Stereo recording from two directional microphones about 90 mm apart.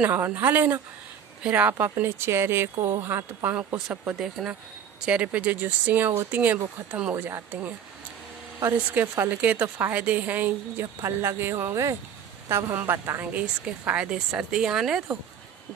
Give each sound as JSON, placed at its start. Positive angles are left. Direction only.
{"t": 0.0, "sound": "a woman's voice", "side_deg": -20}
{"t": 7.2, "sound": "a woman's voice", "side_deg": -25}
{"t": 8.7, "sound": "a woman's voice", "side_deg": -20}
{"t": 11.0, "sound": "a woman's voice", "side_deg": -30}
{"t": 13.3, "sound": "speech", "side_deg": -15}